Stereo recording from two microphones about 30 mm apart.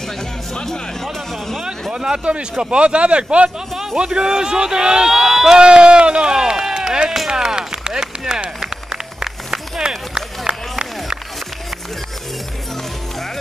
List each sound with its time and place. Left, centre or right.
0.7 s music: centre
1.6 s a sound: right
2.7 s speech: right
4.0 s a man's voice: right
5.5 s run: right
7.2 s chop: right
9.2 s run: centre